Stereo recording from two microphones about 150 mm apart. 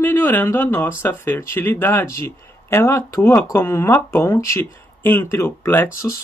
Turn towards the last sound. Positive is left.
turn(degrees=20)  # may be behind; listen again after turning